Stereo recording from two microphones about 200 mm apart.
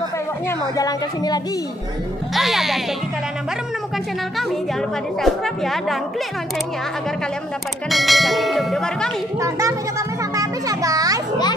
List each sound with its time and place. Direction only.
0.5 s speech: 15° left (ahead or behind)
2.3 s speech: centre (ahead or behind)
5.2 s speech: centre (ahead or behind)
7.9 s speech: centre (ahead or behind)
9.4 s a child's voice: 15° right (ahead or behind)